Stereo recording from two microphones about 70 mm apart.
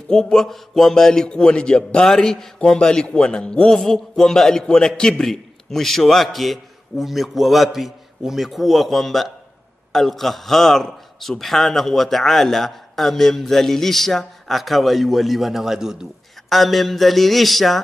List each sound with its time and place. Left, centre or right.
0.1 s a man's voice: centre